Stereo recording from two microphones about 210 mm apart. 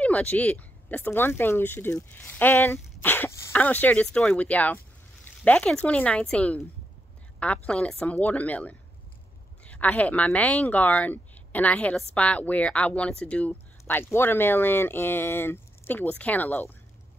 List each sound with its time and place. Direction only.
0.0 s speech: 5° left (ahead or behind)